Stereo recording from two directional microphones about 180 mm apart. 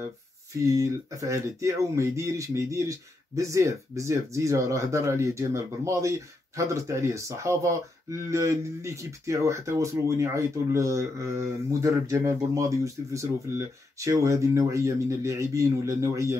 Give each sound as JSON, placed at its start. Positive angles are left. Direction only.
{"t": 0.7, "sound": "speech", "side_deg": -15}